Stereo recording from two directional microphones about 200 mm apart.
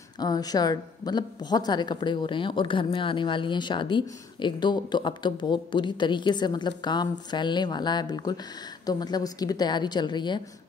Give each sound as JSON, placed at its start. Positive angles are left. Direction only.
{"t": 0.2, "sound": "a woman's voice", "side_deg": 20}